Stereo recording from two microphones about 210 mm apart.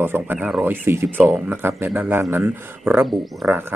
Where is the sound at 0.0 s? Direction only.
10° right (ahead or behind).